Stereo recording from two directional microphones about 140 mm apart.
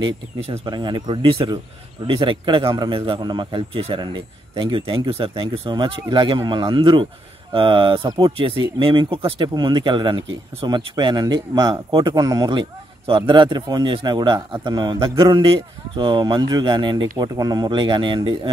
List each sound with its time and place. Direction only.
0.0 s a man's voice: 35° right (ahead or behind)